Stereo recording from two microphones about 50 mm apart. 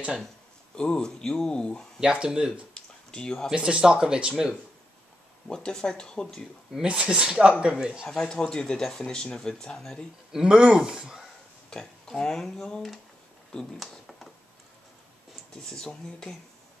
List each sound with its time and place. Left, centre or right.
0.7 s speech: centre
2.0 s speech: centre
2.7 s a sound: centre
3.5 s speech: centre
5.5 s speech: centre
6.8 s speech: centre
8.2 s speech: centre
10.3 s speech: centre
12.1 s speech: centre
15.5 s speech: centre